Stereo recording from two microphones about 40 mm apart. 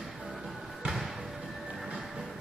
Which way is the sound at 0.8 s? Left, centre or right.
Centre.